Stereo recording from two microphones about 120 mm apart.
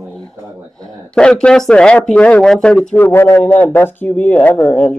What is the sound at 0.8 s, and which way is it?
Speech, 5° left (ahead or behind).